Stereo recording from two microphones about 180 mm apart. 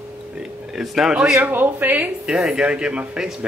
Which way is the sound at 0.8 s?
Centre (ahead or behind).